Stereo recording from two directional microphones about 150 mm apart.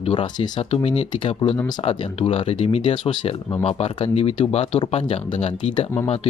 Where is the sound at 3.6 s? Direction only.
40° left (ahead or behind).